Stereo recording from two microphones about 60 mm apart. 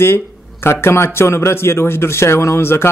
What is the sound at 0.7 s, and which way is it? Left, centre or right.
Speech, left.